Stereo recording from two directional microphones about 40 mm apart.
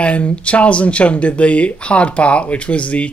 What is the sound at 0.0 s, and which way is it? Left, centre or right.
Speech, left.